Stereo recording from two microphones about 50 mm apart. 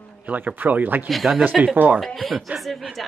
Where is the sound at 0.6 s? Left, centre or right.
Right.